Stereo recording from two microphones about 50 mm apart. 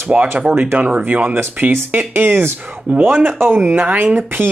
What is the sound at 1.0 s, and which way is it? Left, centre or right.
Speech, right.